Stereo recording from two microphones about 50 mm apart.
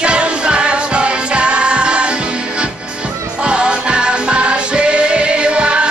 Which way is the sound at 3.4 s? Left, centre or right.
Centre.